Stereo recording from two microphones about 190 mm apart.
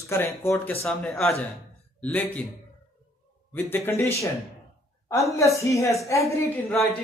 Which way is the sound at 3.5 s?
10° left (ahead or behind).